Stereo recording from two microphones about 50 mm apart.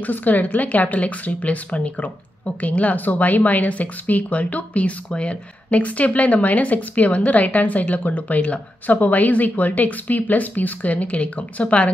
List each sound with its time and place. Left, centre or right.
0.0 s speech: left